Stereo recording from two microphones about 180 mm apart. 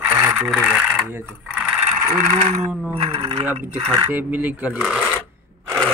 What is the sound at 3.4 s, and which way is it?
Coin, 10° right (ahead or behind).